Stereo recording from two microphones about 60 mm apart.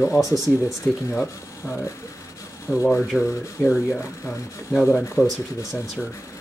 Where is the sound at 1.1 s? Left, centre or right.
Left.